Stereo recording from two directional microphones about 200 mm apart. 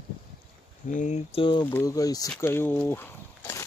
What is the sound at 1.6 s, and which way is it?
Speech, 15° left (ahead or behind).